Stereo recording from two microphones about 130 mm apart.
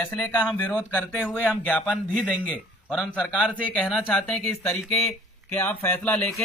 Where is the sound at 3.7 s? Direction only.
10° left (ahead or behind).